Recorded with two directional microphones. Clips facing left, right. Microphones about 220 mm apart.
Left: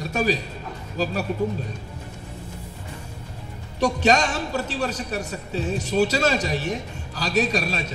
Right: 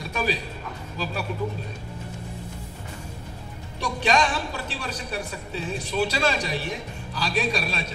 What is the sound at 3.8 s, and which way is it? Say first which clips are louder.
A man's voice: left 4 dB; 45° left (ahead or behind).